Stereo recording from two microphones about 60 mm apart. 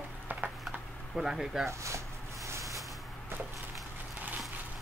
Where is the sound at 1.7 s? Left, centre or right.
Right.